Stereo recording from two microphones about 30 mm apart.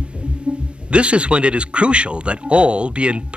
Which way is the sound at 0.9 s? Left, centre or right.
Right.